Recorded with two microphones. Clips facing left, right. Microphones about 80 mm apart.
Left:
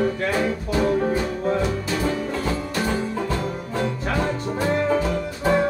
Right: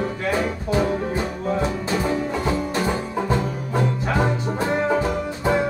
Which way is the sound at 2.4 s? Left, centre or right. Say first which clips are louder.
Right 2 dB; right.